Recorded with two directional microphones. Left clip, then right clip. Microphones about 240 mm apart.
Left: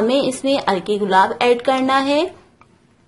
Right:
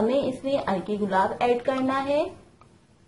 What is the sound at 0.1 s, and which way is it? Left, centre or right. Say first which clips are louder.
A woman's voice: left 7 dB; left.